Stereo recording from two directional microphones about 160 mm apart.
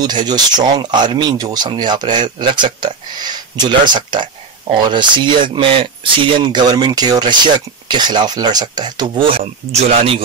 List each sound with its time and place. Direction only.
0.0 s speech: 25° right (ahead or behind)
9.7 s speech: 40° right (ahead or behind)